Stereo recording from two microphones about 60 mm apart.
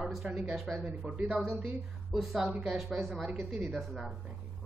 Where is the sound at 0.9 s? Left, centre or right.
Centre.